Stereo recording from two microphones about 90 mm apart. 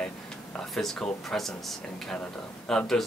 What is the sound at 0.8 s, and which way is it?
Speech, 5° left (ahead or behind).